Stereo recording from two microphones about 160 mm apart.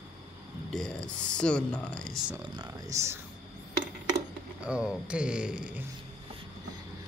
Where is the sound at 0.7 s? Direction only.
5° left (ahead or behind).